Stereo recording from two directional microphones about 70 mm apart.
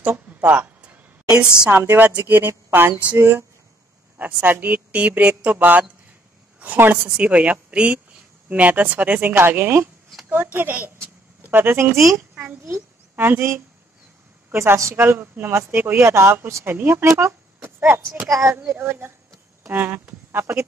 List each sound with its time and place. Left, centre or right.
0.0 s a sound: right
1.7 s a woman's voice: right
13.1 s speech: right
15.0 s a woman's voice: right
18.2 s a child's voice: right
18.7 s a woman's voice: right
20.2 s speech: right